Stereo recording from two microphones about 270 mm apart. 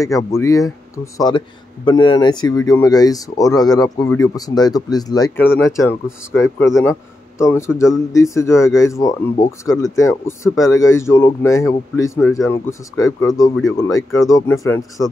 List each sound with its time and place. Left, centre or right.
0.0 s speech: centre